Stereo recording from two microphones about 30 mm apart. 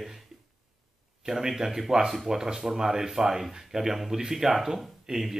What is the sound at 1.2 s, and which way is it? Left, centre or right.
Speech, centre.